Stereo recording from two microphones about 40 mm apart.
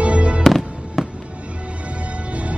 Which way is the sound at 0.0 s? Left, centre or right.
Right.